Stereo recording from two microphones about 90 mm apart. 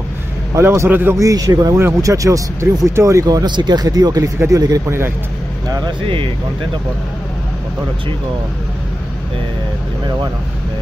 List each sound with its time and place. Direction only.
0.6 s a man's voice: 30° right (ahead or behind)
1.1 s speech: 40° right (ahead or behind)
4.8 s a man's voice: 30° right (ahead or behind)
6.0 s speech: 80° right